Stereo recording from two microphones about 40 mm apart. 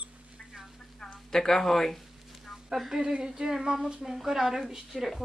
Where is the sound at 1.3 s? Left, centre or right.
Centre.